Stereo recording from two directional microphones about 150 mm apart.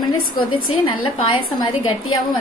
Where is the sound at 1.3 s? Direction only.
35° left (ahead or behind).